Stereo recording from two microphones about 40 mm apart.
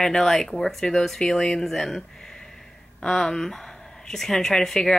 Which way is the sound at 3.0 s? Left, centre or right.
Centre.